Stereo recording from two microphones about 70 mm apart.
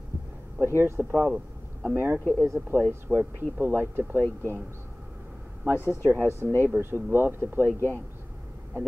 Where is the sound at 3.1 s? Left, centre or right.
Right.